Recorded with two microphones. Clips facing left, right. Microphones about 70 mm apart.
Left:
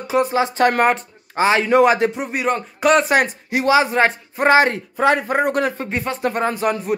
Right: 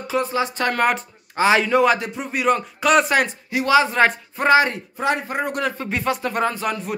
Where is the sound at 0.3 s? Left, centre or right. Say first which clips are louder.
Left 5 dB; left.